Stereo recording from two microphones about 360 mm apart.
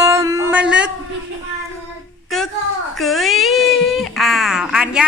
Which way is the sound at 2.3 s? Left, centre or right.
Centre.